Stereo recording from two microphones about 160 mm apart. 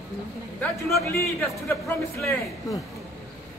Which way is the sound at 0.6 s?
Centre (ahead or behind).